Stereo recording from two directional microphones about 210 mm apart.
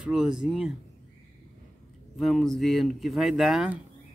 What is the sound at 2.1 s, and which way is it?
A man's voice, centre (ahead or behind).